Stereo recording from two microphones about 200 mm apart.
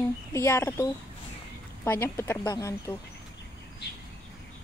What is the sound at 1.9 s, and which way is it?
Speech, 10° left (ahead or behind).